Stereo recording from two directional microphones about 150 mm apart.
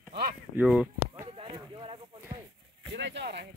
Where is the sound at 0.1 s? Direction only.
90° right.